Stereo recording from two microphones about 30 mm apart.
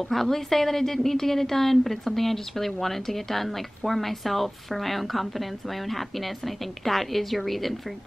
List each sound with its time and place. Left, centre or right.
0.1 s a woman's voice: centre